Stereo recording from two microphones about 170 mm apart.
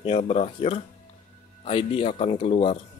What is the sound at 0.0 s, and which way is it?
Speech, 35° left (ahead or behind).